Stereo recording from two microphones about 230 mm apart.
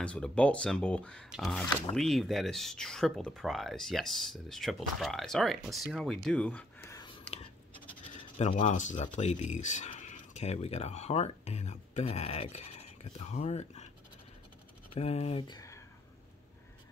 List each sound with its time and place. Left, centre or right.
0.0 s speech: centre
8.4 s speech: left
15.0 s speech: left